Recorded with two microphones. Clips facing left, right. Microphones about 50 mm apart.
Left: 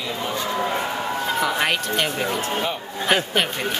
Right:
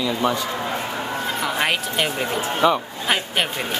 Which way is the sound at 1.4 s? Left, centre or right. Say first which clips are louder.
Even; centre.